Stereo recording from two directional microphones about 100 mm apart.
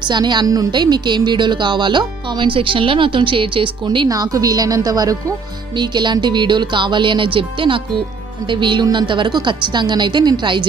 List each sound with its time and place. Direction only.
0.1 s a woman's voice: 50° right (ahead or behind)
4.1 s a woman's voice: 35° right (ahead or behind)
5.8 s a woman's voice: 50° right (ahead or behind)